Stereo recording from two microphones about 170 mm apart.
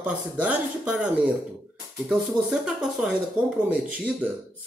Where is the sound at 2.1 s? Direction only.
Centre (ahead or behind).